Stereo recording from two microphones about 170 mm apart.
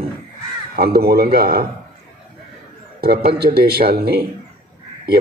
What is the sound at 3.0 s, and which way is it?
Speech, 65° right (ahead or behind).